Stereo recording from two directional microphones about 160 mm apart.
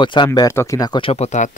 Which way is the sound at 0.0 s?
30° left (ahead or behind).